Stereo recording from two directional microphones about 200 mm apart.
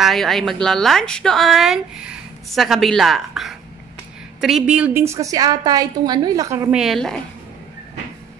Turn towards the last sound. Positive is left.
turn(degrees=0)  # may be behind; listen again after turning